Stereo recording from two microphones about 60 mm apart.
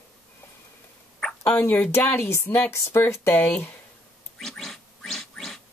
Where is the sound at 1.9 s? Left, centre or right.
Left.